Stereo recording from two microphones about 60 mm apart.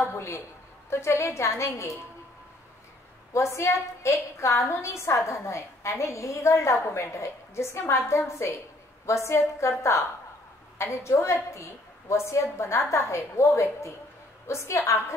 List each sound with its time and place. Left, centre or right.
0.1 s a woman's voice: left
3.3 s a woman's voice: left